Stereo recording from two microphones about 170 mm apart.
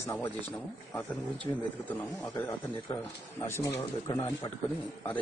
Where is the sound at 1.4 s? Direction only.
10° left (ahead or behind).